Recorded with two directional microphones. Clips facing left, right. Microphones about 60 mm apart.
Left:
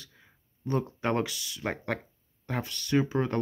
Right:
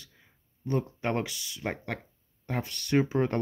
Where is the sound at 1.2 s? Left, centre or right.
Right.